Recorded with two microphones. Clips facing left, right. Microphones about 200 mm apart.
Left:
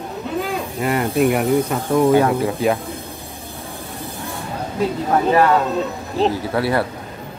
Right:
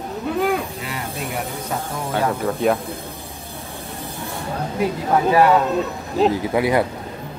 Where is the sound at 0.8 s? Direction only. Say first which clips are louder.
Left 12 dB; 60° left (ahead or behind).